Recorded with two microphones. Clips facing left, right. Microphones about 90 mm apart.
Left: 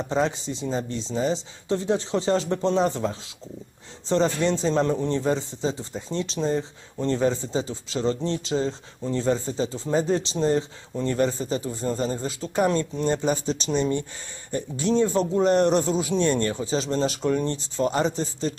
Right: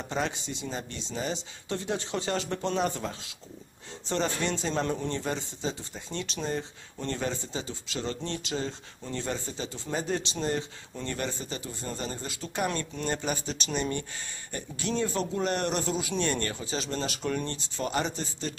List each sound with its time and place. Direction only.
0.0 s a man's voice: 30° left (ahead or behind)